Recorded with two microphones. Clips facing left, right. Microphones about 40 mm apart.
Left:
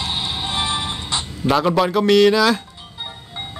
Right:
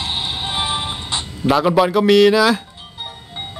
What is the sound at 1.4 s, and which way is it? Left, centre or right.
Speech, centre.